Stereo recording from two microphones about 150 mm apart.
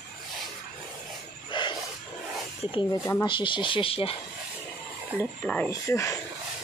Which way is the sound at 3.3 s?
35° left (ahead or behind).